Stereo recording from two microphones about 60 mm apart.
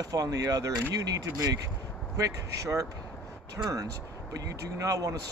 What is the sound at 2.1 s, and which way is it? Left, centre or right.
Speech, right.